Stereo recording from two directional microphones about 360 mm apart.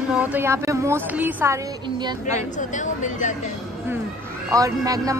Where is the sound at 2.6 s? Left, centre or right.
Left.